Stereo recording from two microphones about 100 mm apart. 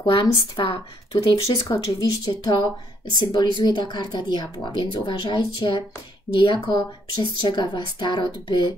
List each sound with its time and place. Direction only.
0.0 s speech: 50° left (ahead or behind)
2.0 s speech: 40° left (ahead or behind)